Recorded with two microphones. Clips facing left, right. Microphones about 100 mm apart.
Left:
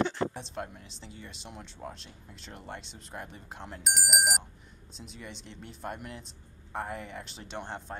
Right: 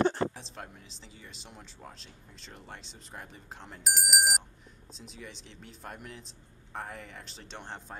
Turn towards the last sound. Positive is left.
turn(degrees=0)  # may be behind; listen again after turning